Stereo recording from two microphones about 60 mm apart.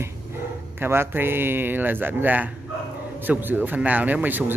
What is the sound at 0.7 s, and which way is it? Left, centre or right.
Speech, right.